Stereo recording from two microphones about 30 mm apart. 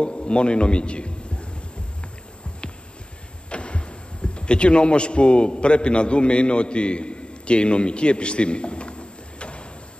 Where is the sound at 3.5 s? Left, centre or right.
Left.